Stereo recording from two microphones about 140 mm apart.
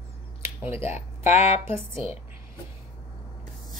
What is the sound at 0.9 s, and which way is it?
Speech, 55° left (ahead or behind).